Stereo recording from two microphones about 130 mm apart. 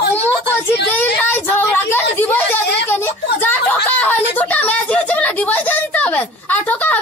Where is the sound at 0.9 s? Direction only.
15° left (ahead or behind).